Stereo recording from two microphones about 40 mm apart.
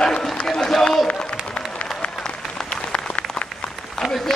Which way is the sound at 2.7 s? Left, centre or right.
Left.